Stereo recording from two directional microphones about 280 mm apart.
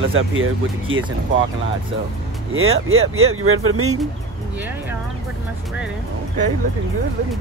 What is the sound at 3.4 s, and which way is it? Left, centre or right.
Speech, right.